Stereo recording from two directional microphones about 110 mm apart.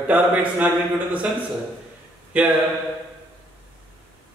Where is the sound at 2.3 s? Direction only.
10° right (ahead or behind).